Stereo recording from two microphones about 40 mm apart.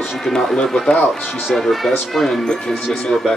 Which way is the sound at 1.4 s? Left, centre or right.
Centre.